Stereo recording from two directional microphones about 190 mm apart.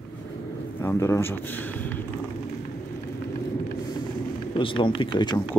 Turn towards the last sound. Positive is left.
turn(degrees=25)  # may be behind; listen again after turning